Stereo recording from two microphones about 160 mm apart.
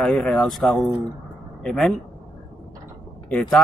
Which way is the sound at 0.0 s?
5° left (ahead or behind).